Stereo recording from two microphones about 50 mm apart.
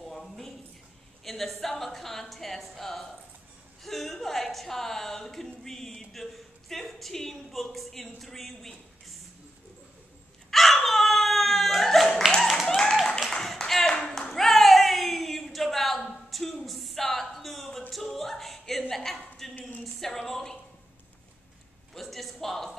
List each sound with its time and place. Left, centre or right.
0.0 s a sound: centre
1.2 s speech: centre
10.5 s dog: centre
12.4 s a sound: centre
12.6 s clapping: centre
13.9 s clapping: centre
14.3 s a sound: centre
19.8 s speech: centre
21.9 s speech: centre